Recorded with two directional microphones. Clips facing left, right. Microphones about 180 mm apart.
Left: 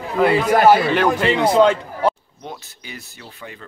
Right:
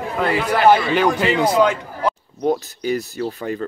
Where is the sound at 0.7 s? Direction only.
Centre (ahead or behind).